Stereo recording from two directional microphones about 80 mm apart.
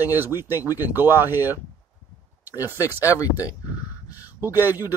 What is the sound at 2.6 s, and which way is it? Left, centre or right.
Speech, right.